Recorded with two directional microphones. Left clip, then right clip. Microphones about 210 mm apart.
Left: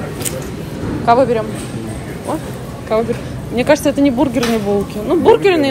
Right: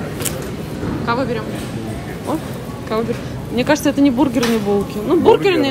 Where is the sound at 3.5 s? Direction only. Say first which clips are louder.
Left 3 dB; 15° right (ahead or behind).